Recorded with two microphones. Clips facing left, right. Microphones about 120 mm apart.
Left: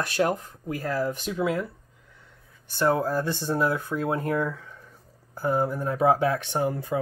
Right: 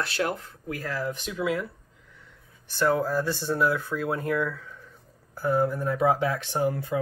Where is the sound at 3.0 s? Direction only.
20° left (ahead or behind).